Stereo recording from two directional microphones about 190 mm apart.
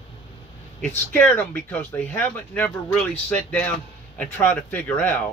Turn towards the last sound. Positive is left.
turn(degrees=10)  # may be behind; listen again after turning